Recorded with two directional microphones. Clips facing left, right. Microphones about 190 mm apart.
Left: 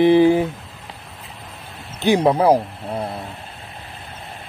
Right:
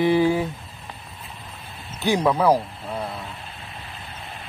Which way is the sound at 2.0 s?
25° left (ahead or behind).